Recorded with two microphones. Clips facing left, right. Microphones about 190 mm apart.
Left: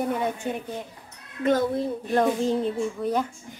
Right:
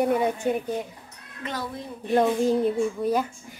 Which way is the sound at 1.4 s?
45° left (ahead or behind).